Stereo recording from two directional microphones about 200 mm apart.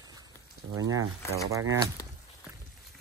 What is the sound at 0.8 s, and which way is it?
Speech, 15° right (ahead or behind).